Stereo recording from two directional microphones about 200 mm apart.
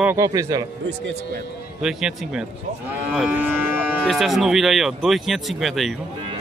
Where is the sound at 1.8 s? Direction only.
5° right (ahead or behind).